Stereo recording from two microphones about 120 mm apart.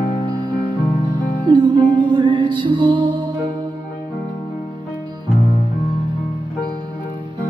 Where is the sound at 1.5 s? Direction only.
40° right (ahead or behind).